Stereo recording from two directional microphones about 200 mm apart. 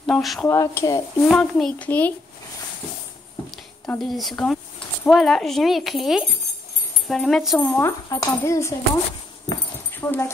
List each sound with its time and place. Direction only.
0.0 s speech: centre (ahead or behind)
0.5 s speech: 15° left (ahead or behind)
1.3 s speech: centre (ahead or behind)
3.8 s speech: 5° left (ahead or behind)
7.8 s speech: 15° left (ahead or behind)
9.5 s dog: 10° left (ahead or behind)